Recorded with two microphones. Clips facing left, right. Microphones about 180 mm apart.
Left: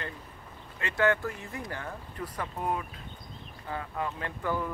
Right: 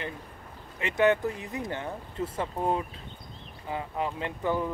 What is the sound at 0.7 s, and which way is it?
Speech, 20° right (ahead or behind).